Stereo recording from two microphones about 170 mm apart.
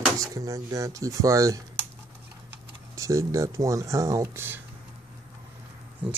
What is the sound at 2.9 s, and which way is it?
Speech, 20° right (ahead or behind).